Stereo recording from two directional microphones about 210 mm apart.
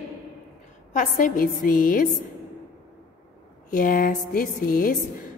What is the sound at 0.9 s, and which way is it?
A woman's voice, 40° left (ahead or behind).